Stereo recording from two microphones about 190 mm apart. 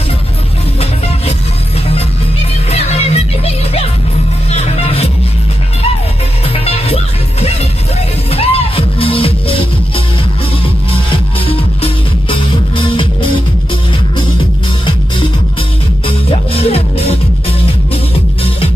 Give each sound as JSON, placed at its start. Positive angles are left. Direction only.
{"t": 2.7, "sound": "music", "side_deg": 35}
{"t": 6.5, "sound": "music", "side_deg": 30}
{"t": 8.3, "sound": "music", "side_deg": 30}
{"t": 11.1, "sound": "music", "side_deg": 30}
{"t": 16.1, "sound": "music", "side_deg": 30}